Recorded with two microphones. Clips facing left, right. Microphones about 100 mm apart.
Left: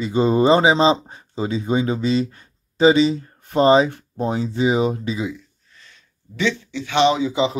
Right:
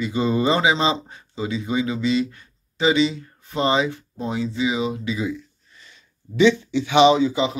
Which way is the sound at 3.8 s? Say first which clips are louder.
Left 3 dB; 50° left (ahead or behind).